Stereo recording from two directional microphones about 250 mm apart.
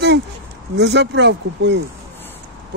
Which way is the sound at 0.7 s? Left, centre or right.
Right.